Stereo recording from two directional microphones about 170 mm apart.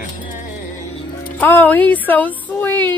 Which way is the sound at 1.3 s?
10° left (ahead or behind).